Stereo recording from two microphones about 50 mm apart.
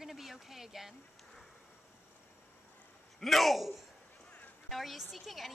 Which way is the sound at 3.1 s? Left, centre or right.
Centre.